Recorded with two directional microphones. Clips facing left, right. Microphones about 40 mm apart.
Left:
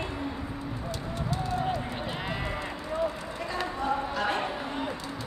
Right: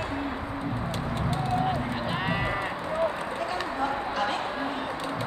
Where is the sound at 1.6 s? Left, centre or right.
Centre.